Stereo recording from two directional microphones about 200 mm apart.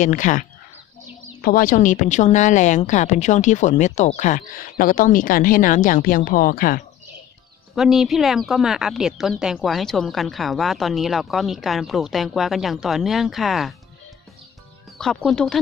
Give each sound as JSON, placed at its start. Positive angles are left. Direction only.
{"t": 0.0, "sound": "a woman's voice", "side_deg": 40}
{"t": 7.7, "sound": "a woman's voice", "side_deg": 0}
{"t": 15.0, "sound": "a woman's voice", "side_deg": 0}